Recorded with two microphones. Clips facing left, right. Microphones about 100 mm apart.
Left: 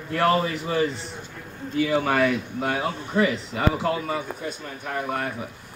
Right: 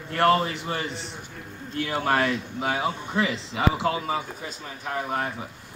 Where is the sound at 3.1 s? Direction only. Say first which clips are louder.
Left 3 dB; 90° right.